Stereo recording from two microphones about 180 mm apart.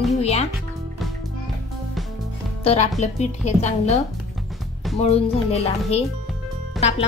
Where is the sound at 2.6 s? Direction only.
40° left (ahead or behind).